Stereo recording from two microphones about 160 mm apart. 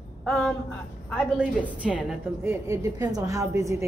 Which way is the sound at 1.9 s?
10° right (ahead or behind).